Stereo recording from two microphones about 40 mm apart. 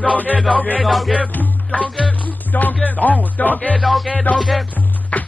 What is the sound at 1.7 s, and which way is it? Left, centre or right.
Music, left.